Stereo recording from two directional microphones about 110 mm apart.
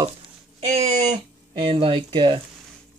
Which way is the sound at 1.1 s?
45° right (ahead or behind).